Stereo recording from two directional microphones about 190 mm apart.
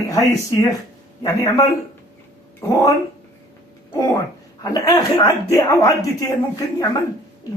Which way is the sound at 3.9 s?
20° left (ahead or behind).